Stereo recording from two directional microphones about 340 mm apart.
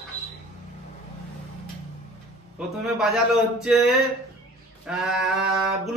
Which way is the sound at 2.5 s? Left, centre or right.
Centre.